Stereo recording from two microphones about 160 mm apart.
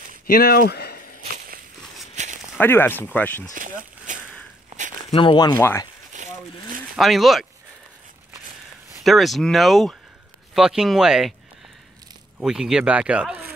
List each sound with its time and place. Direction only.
0.3 s speech: 65° left (ahead or behind)
2.2 s walk: 50° right (ahead or behind)
2.6 s speech: 15° left (ahead or behind)
3.5 s a sound: 55° right (ahead or behind)
5.1 s speech: 30° left (ahead or behind)
6.1 s a sound: 50° right (ahead or behind)
7.0 s speech: centre (ahead or behind)
9.0 s speech: centre (ahead or behind)
12.4 s speech: 5° right (ahead or behind)